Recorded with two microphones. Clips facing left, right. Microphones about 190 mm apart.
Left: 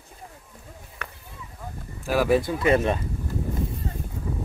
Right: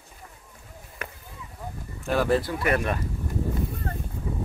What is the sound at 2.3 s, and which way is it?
Speech, 20° left (ahead or behind).